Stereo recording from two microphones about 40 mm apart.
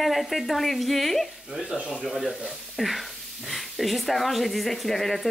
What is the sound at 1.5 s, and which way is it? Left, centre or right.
Speech, centre.